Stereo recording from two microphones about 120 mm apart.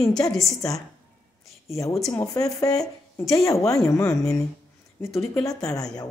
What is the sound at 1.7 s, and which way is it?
A woman's voice, 25° left (ahead or behind).